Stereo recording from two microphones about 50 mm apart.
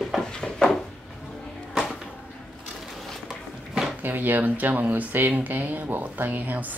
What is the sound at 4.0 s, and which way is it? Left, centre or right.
Speech, right.